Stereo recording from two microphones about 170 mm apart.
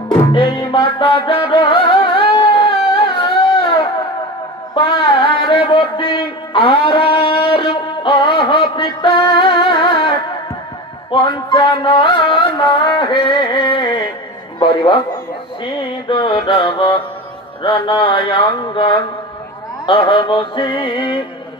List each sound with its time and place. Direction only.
0.1 s music: 30° left (ahead or behind)
17.6 s mantra: 30° left (ahead or behind)
19.9 s music: 30° left (ahead or behind)